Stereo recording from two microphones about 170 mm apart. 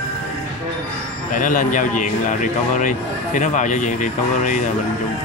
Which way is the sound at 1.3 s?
50° left (ahead or behind).